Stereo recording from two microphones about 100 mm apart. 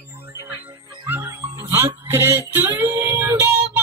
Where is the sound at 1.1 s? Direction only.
20° right (ahead or behind).